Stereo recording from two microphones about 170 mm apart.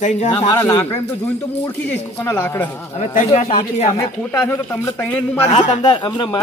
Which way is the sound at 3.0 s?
45° left (ahead or behind).